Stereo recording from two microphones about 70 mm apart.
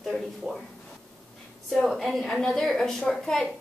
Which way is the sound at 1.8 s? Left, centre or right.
Centre.